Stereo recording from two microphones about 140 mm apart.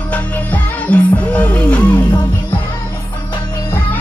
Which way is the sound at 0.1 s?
10° left (ahead or behind).